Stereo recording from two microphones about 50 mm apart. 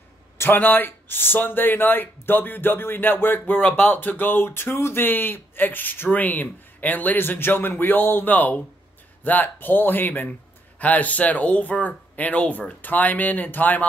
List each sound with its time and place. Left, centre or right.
0.4 s speech: left